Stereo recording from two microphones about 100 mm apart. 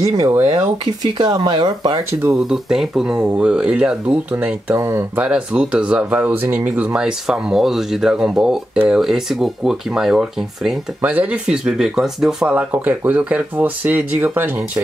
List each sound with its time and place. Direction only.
0.1 s speech: 40° right (ahead or behind)
2.3 s speech: 5° right (ahead or behind)
4.7 s speech: 30° right (ahead or behind)
5.1 s speech: 10° right (ahead or behind)
11.0 s speech: 15° right (ahead or behind)